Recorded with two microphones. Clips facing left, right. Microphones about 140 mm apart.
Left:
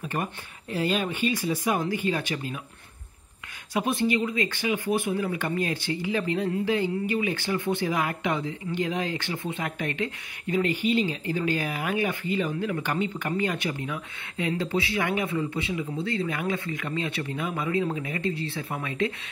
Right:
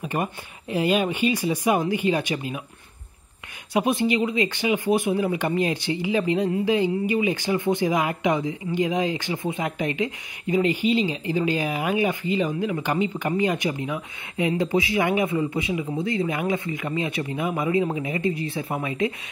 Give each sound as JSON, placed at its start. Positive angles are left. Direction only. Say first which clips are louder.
{"t": 0.0, "sound": "speech", "louder": "right 4 dB", "side_deg": -15}
{"t": 3.7, "sound": "speech", "louder": "right 3 dB", "side_deg": -15}
{"t": 10.8, "sound": "speech", "louder": "right 3 dB", "side_deg": 50}
{"t": 11.1, "sound": "speech", "louder": "right 3 dB", "side_deg": -15}